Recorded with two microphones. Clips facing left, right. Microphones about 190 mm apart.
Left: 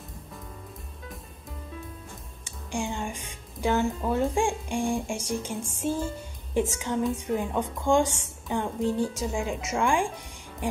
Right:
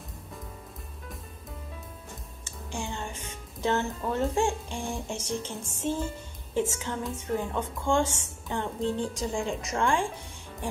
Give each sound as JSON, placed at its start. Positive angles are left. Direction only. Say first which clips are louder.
{"t": 2.4, "sound": "music", "louder": "left 5 dB", "side_deg": 15}
{"t": 3.6, "sound": "a woman's voice", "louder": "left 3 dB", "side_deg": 10}
{"t": 10.6, "sound": "music", "louder": "left 4 dB", "side_deg": 15}